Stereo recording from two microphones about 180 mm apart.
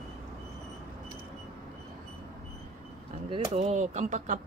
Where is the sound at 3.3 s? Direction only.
40° right (ahead or behind).